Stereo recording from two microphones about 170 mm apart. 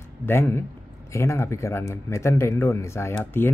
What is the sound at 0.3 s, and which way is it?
Speech, 15° left (ahead or behind).